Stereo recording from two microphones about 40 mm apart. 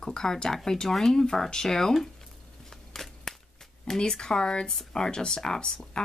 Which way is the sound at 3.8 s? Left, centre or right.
Centre.